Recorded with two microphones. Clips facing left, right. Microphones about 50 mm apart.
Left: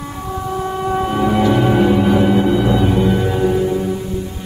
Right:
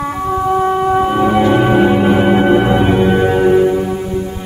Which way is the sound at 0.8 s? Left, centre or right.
Centre.